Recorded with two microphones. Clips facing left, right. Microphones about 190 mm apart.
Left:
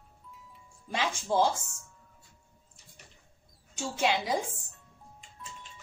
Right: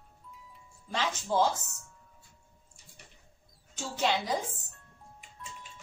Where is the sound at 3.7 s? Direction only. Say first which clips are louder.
Left 1 dB; 10° left (ahead or behind).